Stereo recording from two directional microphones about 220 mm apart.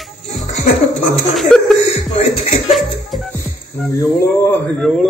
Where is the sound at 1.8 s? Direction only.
30° left (ahead or behind).